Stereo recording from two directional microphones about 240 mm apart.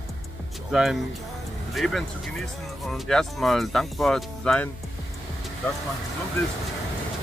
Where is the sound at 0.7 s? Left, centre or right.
Centre.